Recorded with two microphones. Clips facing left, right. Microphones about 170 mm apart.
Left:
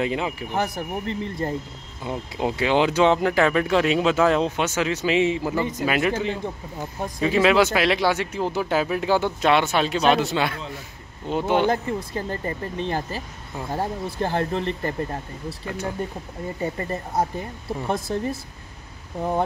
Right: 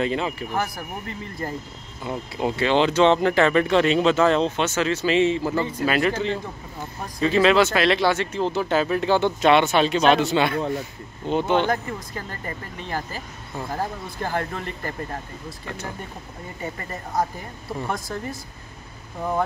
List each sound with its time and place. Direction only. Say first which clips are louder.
0.0 s speech: right 1 dB; 10° left (ahead or behind)
11.7 s speech: left 2 dB; 25° left (ahead or behind)
16.7 s speech: left 2 dB; 25° left (ahead or behind)